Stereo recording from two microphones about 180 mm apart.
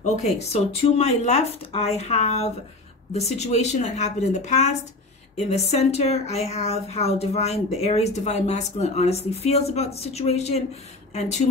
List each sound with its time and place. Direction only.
0.0 s speech: 35° left (ahead or behind)